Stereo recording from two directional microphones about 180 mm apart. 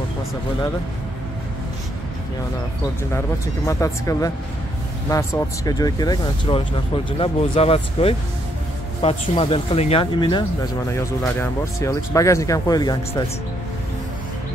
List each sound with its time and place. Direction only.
3.1 s speech: 15° left (ahead or behind)
7.1 s speech: 30° left (ahead or behind)
10.2 s speech: 20° left (ahead or behind)